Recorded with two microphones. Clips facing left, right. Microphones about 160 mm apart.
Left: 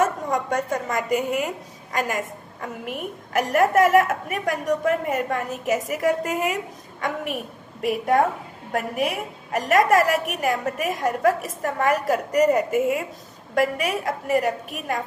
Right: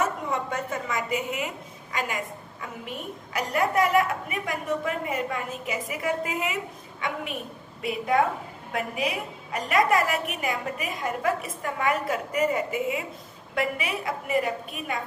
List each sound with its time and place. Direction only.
0.3 s a woman's voice: 45° left (ahead or behind)